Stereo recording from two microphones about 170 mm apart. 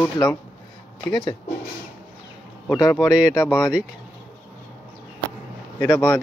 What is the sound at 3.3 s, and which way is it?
Speech, 15° left (ahead or behind).